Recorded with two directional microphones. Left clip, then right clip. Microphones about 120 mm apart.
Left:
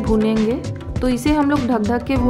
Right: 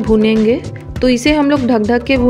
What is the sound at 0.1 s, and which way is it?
Speech, 30° right (ahead or behind).